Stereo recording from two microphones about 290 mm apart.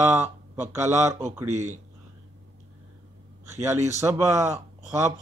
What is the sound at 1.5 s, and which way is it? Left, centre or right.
Speech, right.